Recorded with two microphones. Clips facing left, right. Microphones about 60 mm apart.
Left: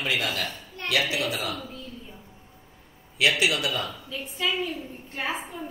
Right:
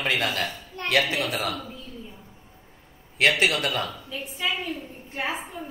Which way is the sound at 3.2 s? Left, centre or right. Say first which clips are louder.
Right 2 dB; right.